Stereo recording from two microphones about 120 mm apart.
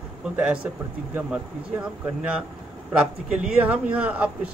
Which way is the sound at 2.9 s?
10° right (ahead or behind).